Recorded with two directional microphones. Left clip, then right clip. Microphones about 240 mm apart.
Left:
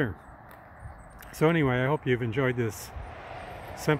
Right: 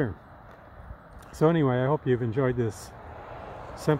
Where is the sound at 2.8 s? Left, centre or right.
Right.